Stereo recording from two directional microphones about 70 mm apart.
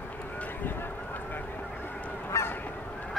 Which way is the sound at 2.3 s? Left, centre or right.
Left.